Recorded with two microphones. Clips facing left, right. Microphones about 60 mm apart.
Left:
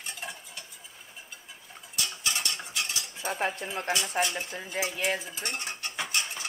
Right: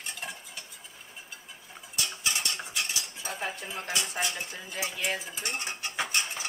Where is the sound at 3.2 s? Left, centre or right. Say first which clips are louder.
Left 7 dB; left.